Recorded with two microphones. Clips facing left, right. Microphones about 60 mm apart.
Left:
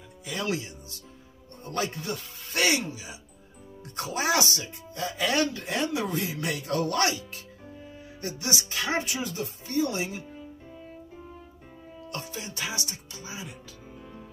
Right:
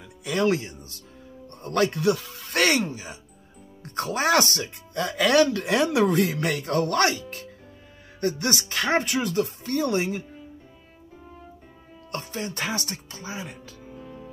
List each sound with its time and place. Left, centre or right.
0.2 s music: right
0.5 s speech: right
1.6 s speech: right
12.1 s speech: right